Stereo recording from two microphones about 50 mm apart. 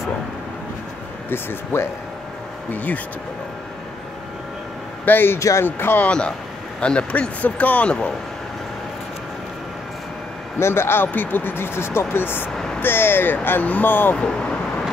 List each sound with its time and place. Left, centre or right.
1.3 s speech: left
2.7 s speech: left
5.0 s speech: left
5.4 s speech: left
5.7 s speech: left
6.0 s speech: left
10.6 s speech: left
14.1 s speech: centre